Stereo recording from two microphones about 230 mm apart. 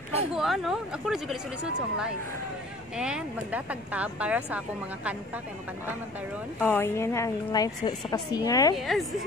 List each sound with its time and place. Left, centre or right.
0.3 s speech: centre
6.6 s a woman's voice: centre
8.7 s speech: centre